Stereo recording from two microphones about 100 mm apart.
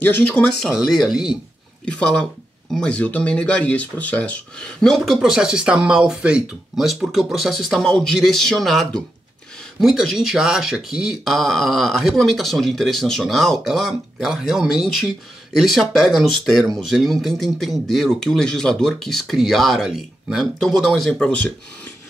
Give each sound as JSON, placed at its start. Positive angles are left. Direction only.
{"t": 0.0, "sound": "speech", "side_deg": 20}
{"t": 0.6, "sound": "speech", "side_deg": 0}
{"t": 1.9, "sound": "speech", "side_deg": 10}